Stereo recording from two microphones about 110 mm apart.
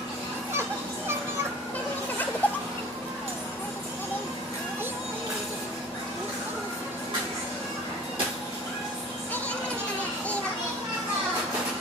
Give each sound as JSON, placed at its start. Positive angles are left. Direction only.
{"t": 0.5, "sound": "children playing", "side_deg": -20}
{"t": 2.4, "sound": "music", "side_deg": 15}